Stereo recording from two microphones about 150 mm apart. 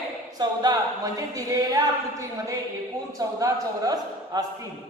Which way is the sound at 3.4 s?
25° right (ahead or behind).